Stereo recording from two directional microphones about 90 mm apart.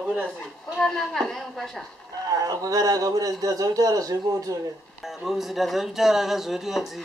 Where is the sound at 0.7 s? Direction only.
Centre (ahead or behind).